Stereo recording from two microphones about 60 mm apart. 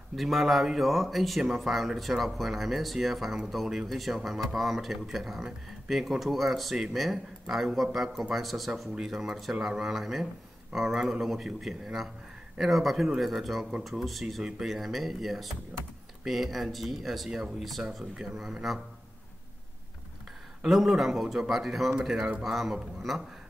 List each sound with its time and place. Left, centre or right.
0.1 s speech: centre
15.7 s speech: right
16.3 s speech: centre
20.7 s speech: centre